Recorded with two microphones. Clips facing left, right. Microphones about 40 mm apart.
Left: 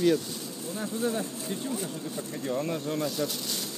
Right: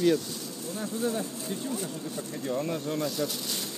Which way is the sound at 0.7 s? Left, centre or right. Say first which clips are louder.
Left 1 dB; centre.